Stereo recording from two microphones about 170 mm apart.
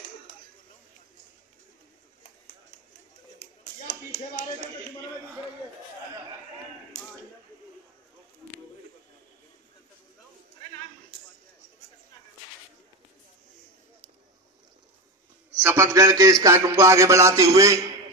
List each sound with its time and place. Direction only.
15.6 s speech: 15° right (ahead or behind)